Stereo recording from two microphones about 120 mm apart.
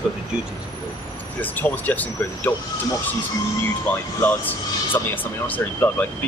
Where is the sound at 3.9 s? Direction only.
15° left (ahead or behind).